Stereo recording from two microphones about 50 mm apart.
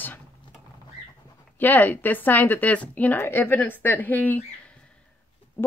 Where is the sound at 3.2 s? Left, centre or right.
Left.